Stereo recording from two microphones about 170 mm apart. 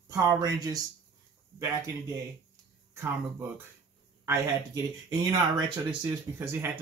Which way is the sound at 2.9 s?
15° right (ahead or behind).